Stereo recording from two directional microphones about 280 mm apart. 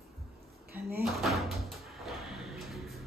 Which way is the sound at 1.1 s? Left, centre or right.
Centre.